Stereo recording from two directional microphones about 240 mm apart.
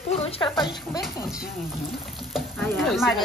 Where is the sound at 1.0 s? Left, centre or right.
Centre.